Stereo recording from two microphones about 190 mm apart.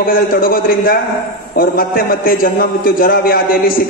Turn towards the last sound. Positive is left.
turn(degrees=50)  # may be behind; listen again after turning